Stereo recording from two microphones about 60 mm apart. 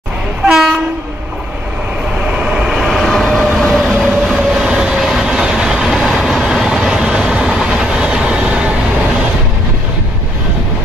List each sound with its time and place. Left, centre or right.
0.5 s train: centre
2.2 s vehicle: right
2.6 s vehicle: centre
3.5 s train: centre
4.6 s train: centre